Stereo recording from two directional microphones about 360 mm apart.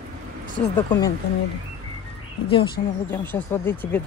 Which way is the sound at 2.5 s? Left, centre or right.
Centre.